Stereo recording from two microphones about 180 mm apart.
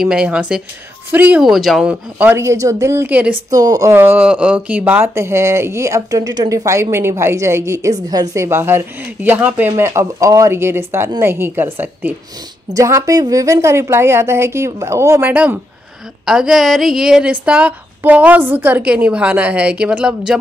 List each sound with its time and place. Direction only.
0.0 s speech: 5° right (ahead or behind)
3.4 s speech: 20° right (ahead or behind)